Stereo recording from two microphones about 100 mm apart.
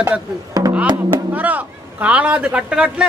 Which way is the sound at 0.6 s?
40° right (ahead or behind).